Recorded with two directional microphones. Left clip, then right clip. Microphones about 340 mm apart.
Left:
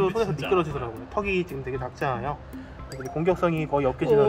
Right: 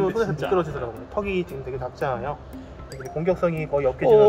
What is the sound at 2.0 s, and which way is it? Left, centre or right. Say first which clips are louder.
Speech: right 1 dB; left.